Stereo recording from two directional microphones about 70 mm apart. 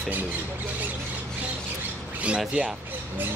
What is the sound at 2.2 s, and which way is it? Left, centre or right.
Speech, centre.